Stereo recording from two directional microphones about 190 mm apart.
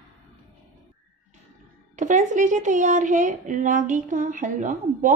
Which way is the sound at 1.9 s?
40° right (ahead or behind).